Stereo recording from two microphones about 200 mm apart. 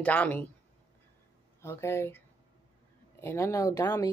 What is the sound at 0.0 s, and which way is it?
Speech, 10° left (ahead or behind).